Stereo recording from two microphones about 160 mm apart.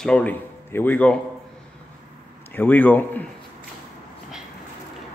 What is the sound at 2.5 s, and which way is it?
Speech, 10° left (ahead or behind).